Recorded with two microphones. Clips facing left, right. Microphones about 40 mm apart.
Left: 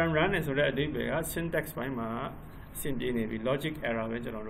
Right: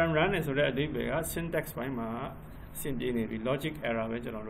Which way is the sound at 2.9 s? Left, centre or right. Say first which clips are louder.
Even; centre.